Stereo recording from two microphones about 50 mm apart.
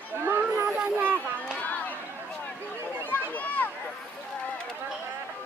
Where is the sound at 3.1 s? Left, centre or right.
Left.